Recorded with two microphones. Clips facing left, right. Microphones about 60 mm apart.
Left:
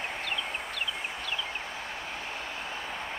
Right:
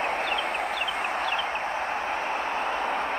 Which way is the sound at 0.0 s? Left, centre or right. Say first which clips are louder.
Right 8 dB; right.